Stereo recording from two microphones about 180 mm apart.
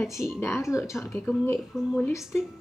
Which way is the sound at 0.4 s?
15° left (ahead or behind).